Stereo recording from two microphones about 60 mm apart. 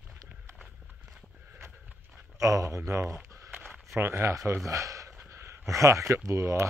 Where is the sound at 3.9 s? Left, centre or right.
Right.